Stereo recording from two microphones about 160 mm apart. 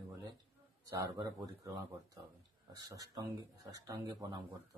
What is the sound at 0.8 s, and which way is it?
Speech, 20° right (ahead or behind).